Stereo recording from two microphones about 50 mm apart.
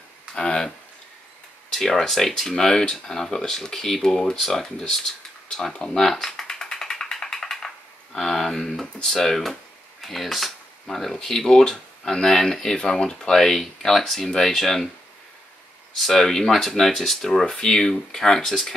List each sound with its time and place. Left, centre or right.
0.3 s a sound: centre
1.7 s speech: centre
5.5 s typing: centre
10.0 s speech: centre
16.0 s speech: centre